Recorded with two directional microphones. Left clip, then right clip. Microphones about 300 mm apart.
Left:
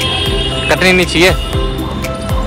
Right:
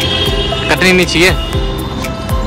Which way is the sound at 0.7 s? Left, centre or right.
Centre.